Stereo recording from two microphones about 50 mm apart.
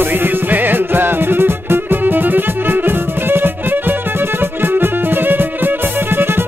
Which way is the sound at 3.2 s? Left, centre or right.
Right.